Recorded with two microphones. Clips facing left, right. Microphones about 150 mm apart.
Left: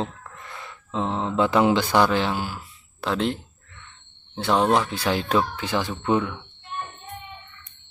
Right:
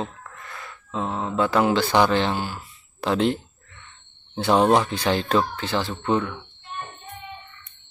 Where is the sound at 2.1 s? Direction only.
5° left (ahead or behind).